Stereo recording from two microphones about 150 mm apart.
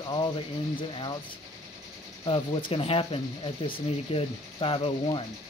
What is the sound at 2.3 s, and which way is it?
Speech, 35° left (ahead or behind).